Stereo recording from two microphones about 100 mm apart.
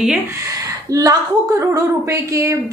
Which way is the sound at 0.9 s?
35° right (ahead or behind).